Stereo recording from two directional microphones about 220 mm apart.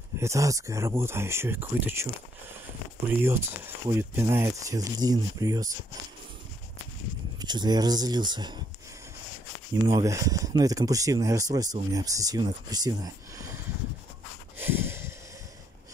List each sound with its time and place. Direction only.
0.2 s speech: 15° right (ahead or behind)
3.2 s speech: 10° right (ahead or behind)
7.3 s speech: 20° right (ahead or behind)
9.8 s speech: 15° right (ahead or behind)
14.6 s a sound: 10° right (ahead or behind)